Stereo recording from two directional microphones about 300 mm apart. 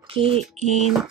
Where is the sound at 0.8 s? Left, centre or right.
Centre.